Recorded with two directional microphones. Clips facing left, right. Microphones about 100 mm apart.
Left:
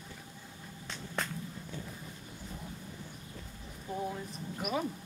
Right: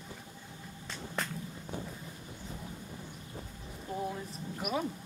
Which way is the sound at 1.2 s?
Centre (ahead or behind).